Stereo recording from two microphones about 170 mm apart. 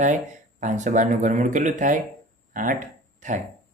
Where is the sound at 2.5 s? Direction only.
50° right (ahead or behind).